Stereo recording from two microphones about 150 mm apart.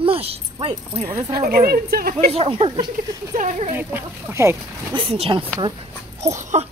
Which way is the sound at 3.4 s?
50° right (ahead or behind).